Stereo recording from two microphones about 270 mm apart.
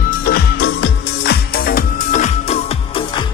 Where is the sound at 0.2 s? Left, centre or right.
Left.